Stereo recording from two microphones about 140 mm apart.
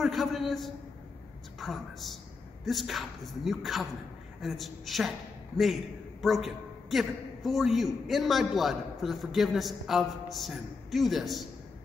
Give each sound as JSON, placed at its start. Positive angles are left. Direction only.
{"t": 0.0, "sound": "a man's voice", "side_deg": 0}
{"t": 6.2, "sound": "a man's voice", "side_deg": 0}